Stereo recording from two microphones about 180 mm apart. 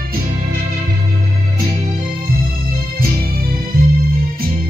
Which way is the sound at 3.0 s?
55° right (ahead or behind).